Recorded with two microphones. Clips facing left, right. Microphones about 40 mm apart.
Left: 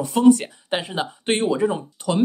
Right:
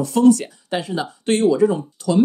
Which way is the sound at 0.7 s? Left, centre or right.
Left.